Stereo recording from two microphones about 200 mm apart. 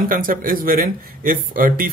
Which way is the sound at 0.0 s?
45° right (ahead or behind).